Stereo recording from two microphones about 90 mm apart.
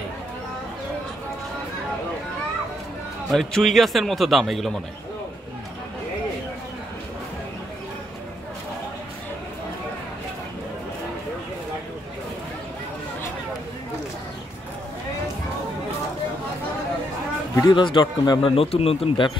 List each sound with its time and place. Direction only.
3.3 s a man's voice: centre (ahead or behind)
17.6 s speech: 60° left (ahead or behind)
18.6 s speech: 90° left